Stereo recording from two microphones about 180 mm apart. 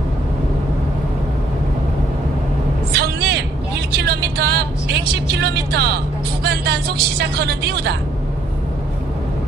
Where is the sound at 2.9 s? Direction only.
65° right (ahead or behind).